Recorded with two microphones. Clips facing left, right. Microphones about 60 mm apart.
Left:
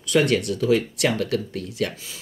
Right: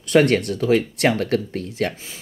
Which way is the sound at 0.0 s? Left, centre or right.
Right.